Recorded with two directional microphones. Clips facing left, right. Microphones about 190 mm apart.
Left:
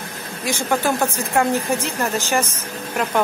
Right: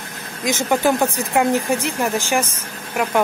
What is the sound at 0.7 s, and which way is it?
Speech, 15° right (ahead or behind).